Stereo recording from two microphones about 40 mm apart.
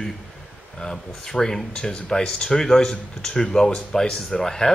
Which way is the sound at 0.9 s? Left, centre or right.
Centre.